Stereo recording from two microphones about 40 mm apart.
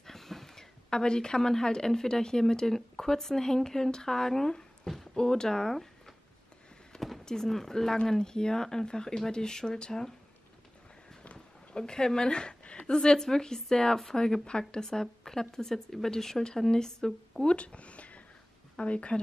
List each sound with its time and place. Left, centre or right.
0.0 s speech: centre
4.9 s a sound: centre
7.2 s a woman's voice: centre
11.3 s a woman's voice: centre
17.5 s speech: left